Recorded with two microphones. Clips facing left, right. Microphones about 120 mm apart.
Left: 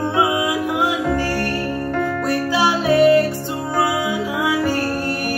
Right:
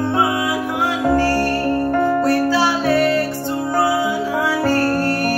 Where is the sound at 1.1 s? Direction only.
25° right (ahead or behind).